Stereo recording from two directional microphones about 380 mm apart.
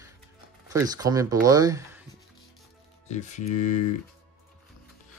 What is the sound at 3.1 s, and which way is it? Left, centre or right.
Speech, centre.